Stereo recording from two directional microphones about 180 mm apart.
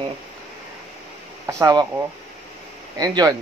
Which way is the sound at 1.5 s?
20° right (ahead or behind).